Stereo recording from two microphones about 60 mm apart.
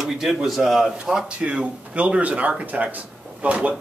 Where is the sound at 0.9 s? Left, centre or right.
Centre.